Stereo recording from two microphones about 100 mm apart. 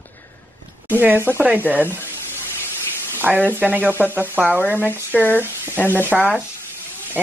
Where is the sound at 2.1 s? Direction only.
25° left (ahead or behind).